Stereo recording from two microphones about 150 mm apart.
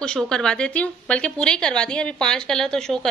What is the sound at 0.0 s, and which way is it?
A woman's voice, 5° left (ahead or behind).